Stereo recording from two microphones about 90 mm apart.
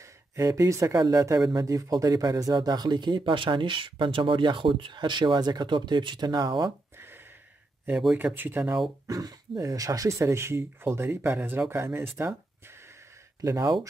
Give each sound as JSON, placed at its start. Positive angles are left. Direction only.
{"t": 0.0, "sound": "speech", "side_deg": -35}
{"t": 7.9, "sound": "speech", "side_deg": -5}
{"t": 8.4, "sound": "speech", "side_deg": -25}
{"t": 9.0, "sound": "speech", "side_deg": -40}
{"t": 13.4, "sound": "speech", "side_deg": -40}